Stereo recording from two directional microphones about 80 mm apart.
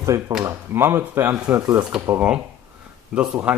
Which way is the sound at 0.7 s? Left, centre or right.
Right.